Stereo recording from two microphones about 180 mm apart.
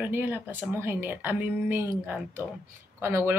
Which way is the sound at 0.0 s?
10° right (ahead or behind).